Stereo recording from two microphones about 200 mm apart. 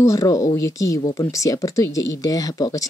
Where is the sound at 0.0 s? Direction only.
15° left (ahead or behind).